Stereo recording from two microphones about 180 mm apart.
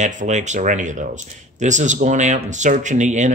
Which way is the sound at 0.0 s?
45° right (ahead or behind).